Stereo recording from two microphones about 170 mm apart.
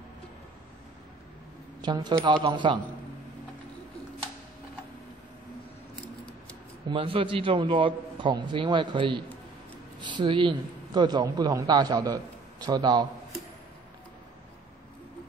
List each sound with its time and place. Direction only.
1.8 s a man's voice: 25° right (ahead or behind)
6.9 s a man's voice: 30° right (ahead or behind)